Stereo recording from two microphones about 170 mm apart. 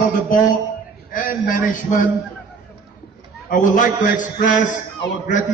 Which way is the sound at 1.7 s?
50° left (ahead or behind).